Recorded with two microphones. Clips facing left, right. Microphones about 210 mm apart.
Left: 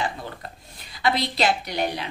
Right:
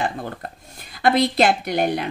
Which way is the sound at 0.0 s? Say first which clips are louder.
Right 4 dB; 50° right (ahead or behind).